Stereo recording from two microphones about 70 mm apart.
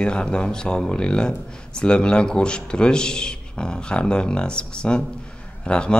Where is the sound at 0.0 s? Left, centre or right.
Centre.